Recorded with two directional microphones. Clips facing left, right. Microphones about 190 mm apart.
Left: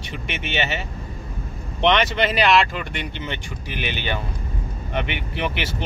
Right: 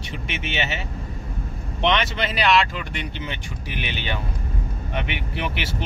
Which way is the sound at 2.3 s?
Centre (ahead or behind).